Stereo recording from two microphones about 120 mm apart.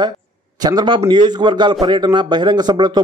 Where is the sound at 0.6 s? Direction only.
35° right (ahead or behind).